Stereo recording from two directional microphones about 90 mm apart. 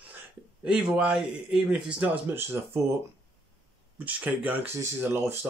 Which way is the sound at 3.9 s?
15° right (ahead or behind).